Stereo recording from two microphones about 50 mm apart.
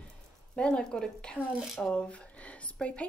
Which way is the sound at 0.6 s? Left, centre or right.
Centre.